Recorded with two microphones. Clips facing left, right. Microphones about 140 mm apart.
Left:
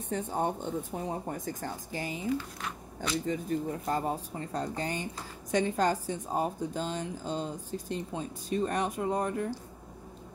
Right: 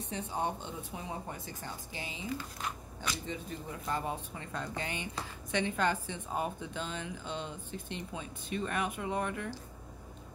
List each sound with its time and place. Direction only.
0.1 s a woman's voice: 45° left (ahead or behind)